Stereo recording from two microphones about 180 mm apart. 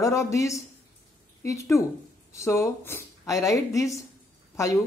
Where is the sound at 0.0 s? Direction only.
15° left (ahead or behind).